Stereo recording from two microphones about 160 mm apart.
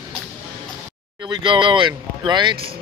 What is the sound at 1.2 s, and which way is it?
Speech, 30° right (ahead or behind).